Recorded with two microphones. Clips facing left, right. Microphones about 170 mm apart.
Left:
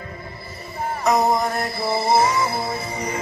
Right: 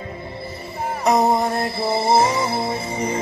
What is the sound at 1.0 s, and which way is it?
Music, 30° right (ahead or behind).